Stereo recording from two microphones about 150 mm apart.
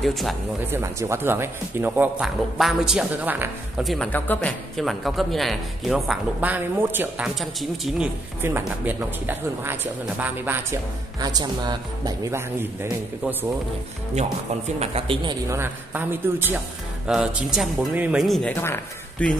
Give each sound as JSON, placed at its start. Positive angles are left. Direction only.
{"t": 0.0, "sound": "a man's voice", "side_deg": 0}
{"t": 0.7, "sound": "a man's voice", "side_deg": -15}
{"t": 3.8, "sound": "a man's voice", "side_deg": 0}
{"t": 4.1, "sound": "a man's voice", "side_deg": 10}
{"t": 7.3, "sound": "a man's voice", "side_deg": 0}
{"t": 8.4, "sound": "speech", "side_deg": -15}
{"t": 11.1, "sound": "speech", "side_deg": -25}
{"t": 14.8, "sound": "a man's voice", "side_deg": -40}
{"t": 15.5, "sound": "a man's voice", "side_deg": -15}
{"t": 18.5, "sound": "speech", "side_deg": 15}